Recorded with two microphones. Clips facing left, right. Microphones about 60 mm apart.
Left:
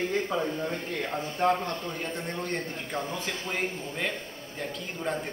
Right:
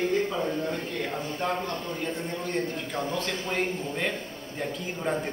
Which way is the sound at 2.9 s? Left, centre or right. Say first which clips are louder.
Left 1 dB; centre.